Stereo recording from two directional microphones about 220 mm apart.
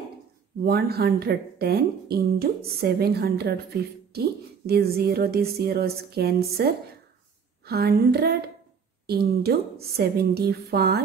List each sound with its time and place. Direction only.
0.7 s a woman's voice: 45° right (ahead or behind)